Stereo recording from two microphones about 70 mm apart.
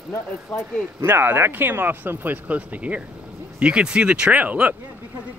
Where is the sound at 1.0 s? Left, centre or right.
Right.